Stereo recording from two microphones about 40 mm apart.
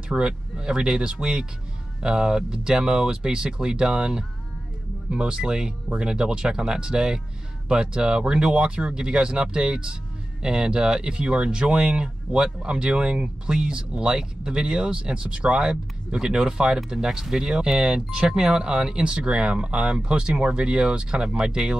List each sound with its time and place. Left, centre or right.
0.1 s speech: right